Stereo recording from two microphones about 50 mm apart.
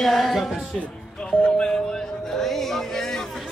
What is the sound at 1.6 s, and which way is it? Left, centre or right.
Music, centre.